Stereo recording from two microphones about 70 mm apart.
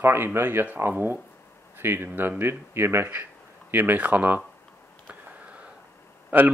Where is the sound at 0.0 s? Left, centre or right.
Right.